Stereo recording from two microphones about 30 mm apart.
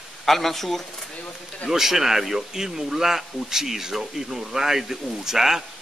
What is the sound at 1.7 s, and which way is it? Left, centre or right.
Speech, centre.